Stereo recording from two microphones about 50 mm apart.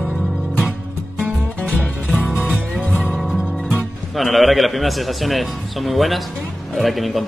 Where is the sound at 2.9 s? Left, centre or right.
Centre.